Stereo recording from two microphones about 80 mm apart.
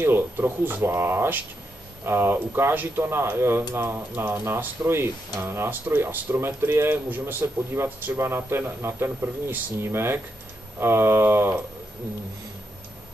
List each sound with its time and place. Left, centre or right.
0.0 s speech: right